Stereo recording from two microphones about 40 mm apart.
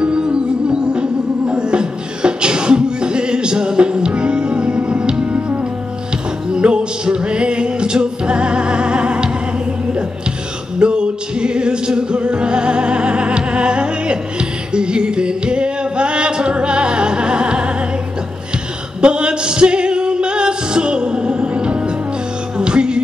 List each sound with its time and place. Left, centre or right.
0.0 s music: right
1.4 s beatboxing: right
5.2 s music: right
6.5 s music: right
10.8 s music: right
18.9 s music: right